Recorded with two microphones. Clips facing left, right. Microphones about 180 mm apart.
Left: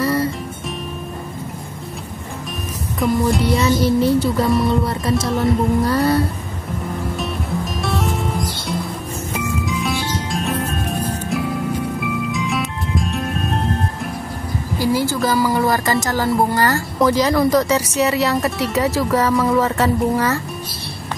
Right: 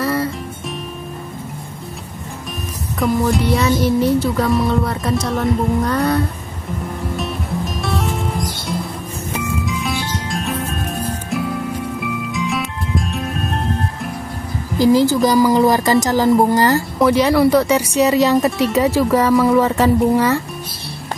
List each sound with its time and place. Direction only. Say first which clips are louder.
0.0 s music: left 1 dB; centre (ahead or behind)
3.0 s music: right 1 dB; centre (ahead or behind)
9.7 s music: left 1 dB; centre (ahead or behind)
14.8 s speech: right 6 dB; 15° right (ahead or behind)
17.0 s speech: right 2 dB; 5° right (ahead or behind)